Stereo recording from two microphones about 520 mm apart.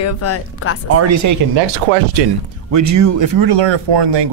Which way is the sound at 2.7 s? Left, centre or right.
Right.